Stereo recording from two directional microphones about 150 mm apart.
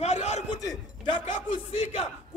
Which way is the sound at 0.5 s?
30° left (ahead or behind).